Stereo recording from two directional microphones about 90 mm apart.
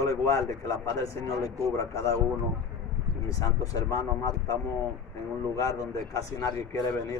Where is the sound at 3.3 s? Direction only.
40° left (ahead or behind).